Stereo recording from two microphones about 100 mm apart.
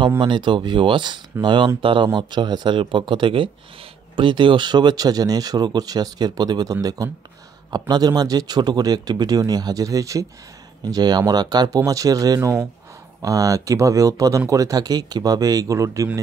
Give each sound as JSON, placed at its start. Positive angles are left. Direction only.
{"t": 0.2, "sound": "speech", "side_deg": -55}
{"t": 2.1, "sound": "speech", "side_deg": -45}